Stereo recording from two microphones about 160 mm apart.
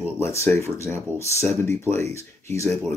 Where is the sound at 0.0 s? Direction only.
15° left (ahead or behind).